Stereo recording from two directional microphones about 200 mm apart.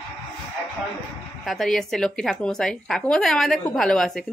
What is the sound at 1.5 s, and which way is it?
Speech, centre (ahead or behind).